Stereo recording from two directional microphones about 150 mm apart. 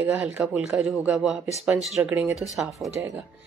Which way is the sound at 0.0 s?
10° right (ahead or behind).